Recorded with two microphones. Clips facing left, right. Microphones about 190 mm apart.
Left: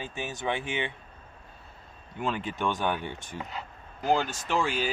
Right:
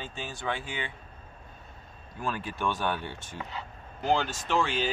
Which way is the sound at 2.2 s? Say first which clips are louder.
Left 2 dB; 20° left (ahead or behind).